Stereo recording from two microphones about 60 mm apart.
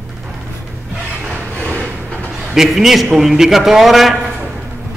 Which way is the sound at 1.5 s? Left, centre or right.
Left.